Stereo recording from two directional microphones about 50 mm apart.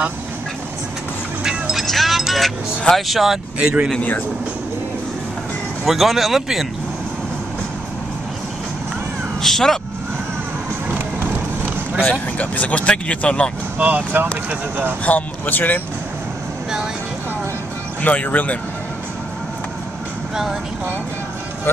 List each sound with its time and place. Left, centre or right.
1.4 s vehicle: centre
1.8 s music: centre
2.9 s speech: centre
5.9 s speech: centre
9.4 s speech: centre
10.9 s vehicle: right
12.1 s speech: left
13.7 s speech: right
15.0 s speech: left
18.0 s speech: left